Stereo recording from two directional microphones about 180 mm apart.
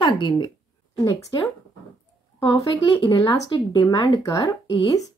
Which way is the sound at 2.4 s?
20° left (ahead or behind).